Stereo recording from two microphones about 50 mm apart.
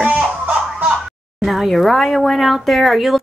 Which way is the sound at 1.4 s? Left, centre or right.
Centre.